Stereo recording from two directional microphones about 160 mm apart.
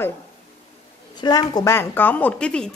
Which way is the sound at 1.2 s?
25° left (ahead or behind).